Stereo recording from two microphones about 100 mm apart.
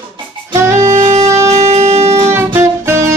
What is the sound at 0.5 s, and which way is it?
Music, 30° right (ahead or behind).